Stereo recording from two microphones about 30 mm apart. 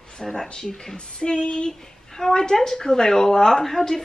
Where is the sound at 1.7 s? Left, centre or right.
Centre.